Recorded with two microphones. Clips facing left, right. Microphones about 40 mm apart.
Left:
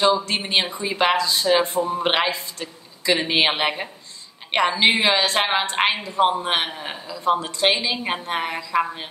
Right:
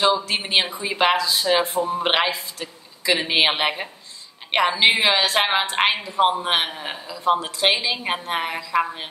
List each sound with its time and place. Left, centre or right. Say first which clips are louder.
0.2 s speech: right 1 dB; centre